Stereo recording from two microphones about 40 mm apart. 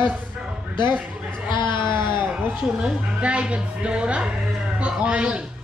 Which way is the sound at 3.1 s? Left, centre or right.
Right.